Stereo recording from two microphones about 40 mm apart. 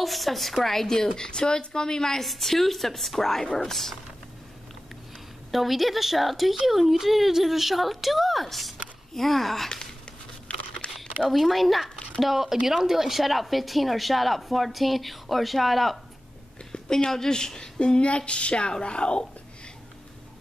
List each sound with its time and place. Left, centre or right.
0.0 s speech: centre
5.5 s a woman's voice: centre
10.5 s a sound: left
11.2 s a woman's voice: centre
16.7 s a sound: centre
17.1 s speech: centre